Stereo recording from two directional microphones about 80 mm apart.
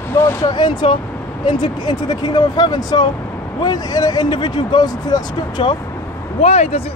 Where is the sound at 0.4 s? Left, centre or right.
Left.